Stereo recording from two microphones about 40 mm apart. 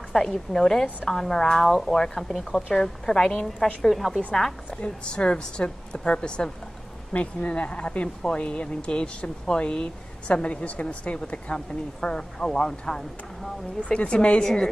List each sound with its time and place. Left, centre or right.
0.1 s a woman's voice: centre
3.8 s a woman's voice: centre
4.8 s speech: left
13.7 s speech: left
14.4 s a woman's voice: centre